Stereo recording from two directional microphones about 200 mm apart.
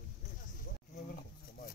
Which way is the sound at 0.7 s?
45° left (ahead or behind).